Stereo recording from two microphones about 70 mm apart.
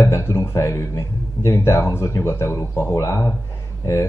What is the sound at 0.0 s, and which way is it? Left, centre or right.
Speech, left.